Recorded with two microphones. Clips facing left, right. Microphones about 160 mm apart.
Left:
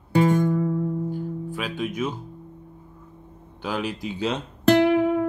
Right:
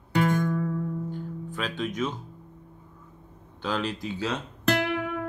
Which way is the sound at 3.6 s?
10° left (ahead or behind).